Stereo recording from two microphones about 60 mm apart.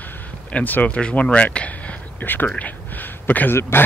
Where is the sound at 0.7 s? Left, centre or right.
Left.